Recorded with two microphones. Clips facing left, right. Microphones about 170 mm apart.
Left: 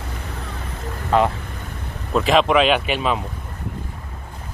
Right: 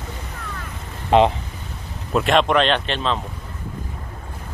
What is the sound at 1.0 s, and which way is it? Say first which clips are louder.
Vehicle: right 3 dB; 20° right (ahead or behind).